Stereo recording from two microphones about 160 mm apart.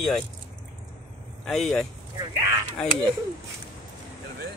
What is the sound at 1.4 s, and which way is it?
Speech, 5° left (ahead or behind).